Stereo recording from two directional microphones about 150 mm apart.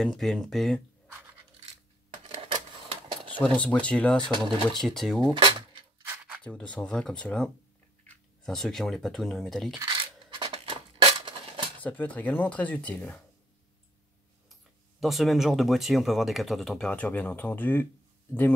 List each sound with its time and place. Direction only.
0.0 s speech: centre (ahead or behind)
2.2 s a sound: 40° right (ahead or behind)
3.3 s speech: 10° left (ahead or behind)
6.0 s a sound: 10° right (ahead or behind)
6.4 s speech: 10° left (ahead or behind)
9.8 s scissors: 30° right (ahead or behind)
11.8 s speech: 10° left (ahead or behind)
14.5 s speech: centre (ahead or behind)